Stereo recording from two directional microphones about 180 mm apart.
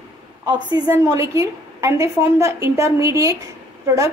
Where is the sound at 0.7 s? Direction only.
20° right (ahead or behind).